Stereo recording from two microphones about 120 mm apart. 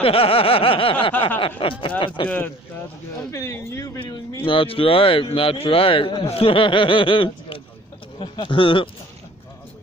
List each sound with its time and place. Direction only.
0.0 s a man's voice: 50° left (ahead or behind)
2.2 s speech: 15° left (ahead or behind)
4.0 s a man's voice: 35° left (ahead or behind)
4.5 s a man's voice: 50° left (ahead or behind)